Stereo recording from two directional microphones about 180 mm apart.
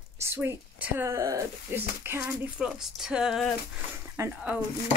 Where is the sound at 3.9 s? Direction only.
10° right (ahead or behind).